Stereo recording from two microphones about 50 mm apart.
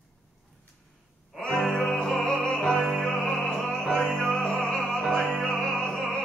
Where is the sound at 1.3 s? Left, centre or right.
Centre.